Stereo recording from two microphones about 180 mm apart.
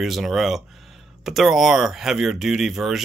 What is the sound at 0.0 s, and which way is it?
Speech, centre (ahead or behind).